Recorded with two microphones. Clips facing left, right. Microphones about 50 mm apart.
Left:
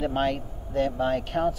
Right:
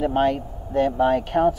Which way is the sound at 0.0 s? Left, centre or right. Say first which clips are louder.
Right 5 dB; centre.